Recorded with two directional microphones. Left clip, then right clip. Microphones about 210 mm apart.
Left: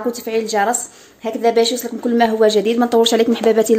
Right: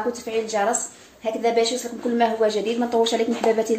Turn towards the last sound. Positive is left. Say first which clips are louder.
# left 7 dB
turn(degrees=55)  # may be behind; listen again after turning